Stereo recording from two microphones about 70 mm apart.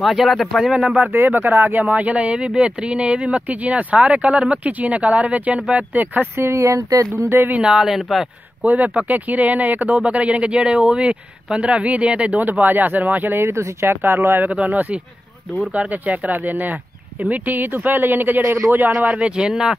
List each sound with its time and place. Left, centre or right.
0.0 s speech: centre
1.1 s speech: right
6.3 s speech: right
7.5 s speech: centre
8.6 s speech: right